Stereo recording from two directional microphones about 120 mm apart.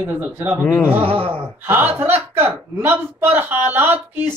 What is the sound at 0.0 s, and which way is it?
Speech, 20° right (ahead or behind).